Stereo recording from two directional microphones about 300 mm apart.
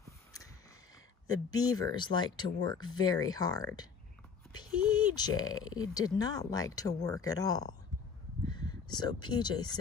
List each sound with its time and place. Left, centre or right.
1.3 s speech: centre